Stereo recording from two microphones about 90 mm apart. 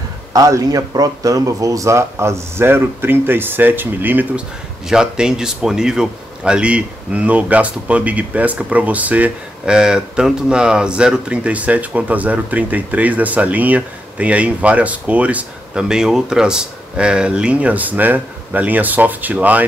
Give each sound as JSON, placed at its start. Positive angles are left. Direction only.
{"t": 0.3, "sound": "speech", "side_deg": -40}
{"t": 4.8, "sound": "speech", "side_deg": -10}